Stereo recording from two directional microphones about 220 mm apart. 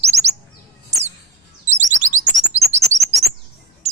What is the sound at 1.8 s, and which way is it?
Chirp, 35° right (ahead or behind).